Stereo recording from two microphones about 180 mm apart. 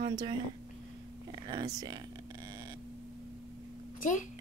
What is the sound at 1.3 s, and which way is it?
Speech, 25° right (ahead or behind).